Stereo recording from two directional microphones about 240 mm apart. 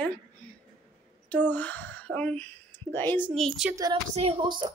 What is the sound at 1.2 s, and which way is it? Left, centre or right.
Speech, centre.